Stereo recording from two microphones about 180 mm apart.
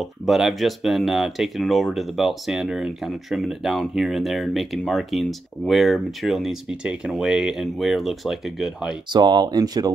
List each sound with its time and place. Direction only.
0.3 s speech: centre (ahead or behind)
9.1 s speech: 25° right (ahead or behind)